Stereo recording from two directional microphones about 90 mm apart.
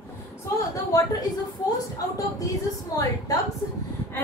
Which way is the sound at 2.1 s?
40° left (ahead or behind).